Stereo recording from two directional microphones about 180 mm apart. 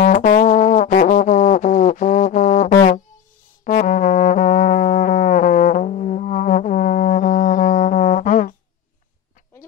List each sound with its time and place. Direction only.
0.0 s music: 45° left (ahead or behind)